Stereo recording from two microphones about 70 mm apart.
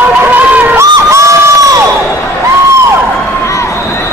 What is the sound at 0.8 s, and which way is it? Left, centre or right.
Crowd, right.